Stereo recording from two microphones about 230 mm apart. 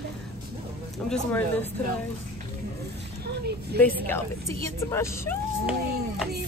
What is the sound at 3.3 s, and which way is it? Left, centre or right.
Speech, right.